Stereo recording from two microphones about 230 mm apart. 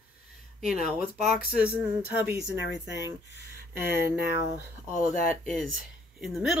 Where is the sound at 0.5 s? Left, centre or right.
Centre.